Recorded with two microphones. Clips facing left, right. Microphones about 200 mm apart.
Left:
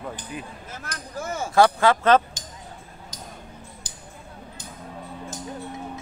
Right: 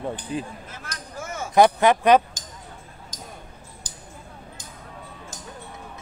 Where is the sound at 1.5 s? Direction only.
20° right (ahead or behind).